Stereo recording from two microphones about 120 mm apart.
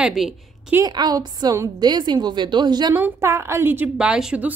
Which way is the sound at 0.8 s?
35° right (ahead or behind).